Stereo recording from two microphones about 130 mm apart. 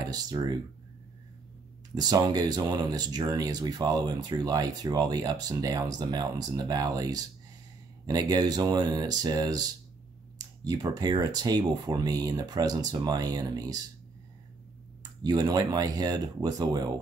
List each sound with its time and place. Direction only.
0.1 s speech: 30° right (ahead or behind)
2.0 s speech: 30° right (ahead or behind)
15.2 s speech: 30° right (ahead or behind)